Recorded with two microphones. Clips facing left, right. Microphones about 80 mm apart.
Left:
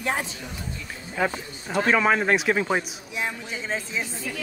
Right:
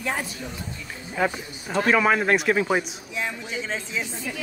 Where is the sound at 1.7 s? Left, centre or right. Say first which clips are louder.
Right 1 dB; centre.